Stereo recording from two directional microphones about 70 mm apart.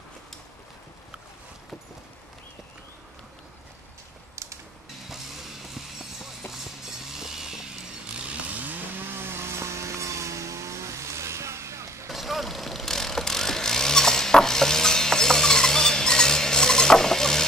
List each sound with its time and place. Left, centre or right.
7.2 s chainsaw: centre; by 12.1 s right
12.1 s vehicle: centre